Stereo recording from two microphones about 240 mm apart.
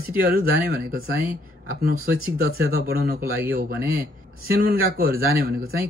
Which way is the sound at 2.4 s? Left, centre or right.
Right.